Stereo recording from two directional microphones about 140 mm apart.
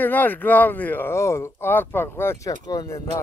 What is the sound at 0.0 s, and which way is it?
Speech, 15° left (ahead or behind).